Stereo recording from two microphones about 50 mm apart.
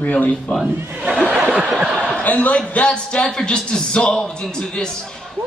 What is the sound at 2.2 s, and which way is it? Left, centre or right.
A man's voice, left.